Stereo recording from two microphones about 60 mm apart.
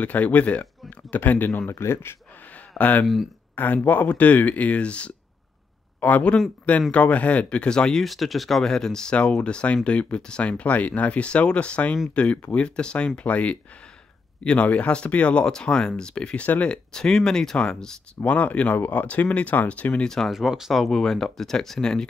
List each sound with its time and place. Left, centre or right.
0.0 s speech: left
1.7 s speech: left
2.8 s speech: left; by 8.0 s centre
8.0 s speech: centre
16.4 s speech: left
16.7 s speech: centre
18.2 s speech: left
20.2 s speech: centre